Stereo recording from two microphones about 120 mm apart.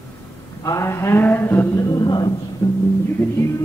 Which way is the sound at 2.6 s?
30° left (ahead or behind).